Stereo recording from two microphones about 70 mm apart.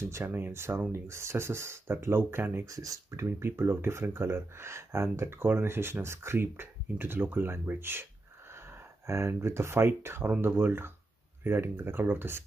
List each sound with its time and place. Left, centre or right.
0.1 s speech: right
2.6 s speech: right
8.5 s speech: right